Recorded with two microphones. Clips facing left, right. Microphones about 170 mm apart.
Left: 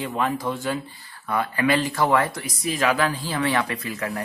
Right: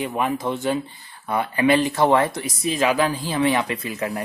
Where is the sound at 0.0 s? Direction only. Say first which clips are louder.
Right 2 dB; 15° right (ahead or behind).